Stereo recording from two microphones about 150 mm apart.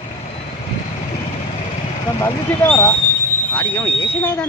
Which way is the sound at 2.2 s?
15° left (ahead or behind).